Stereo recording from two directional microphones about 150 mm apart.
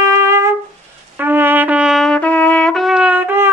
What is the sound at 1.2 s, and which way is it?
Brass instrument, 15° right (ahead or behind).